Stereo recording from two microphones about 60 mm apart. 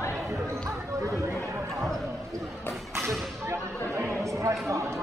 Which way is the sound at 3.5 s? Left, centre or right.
Right.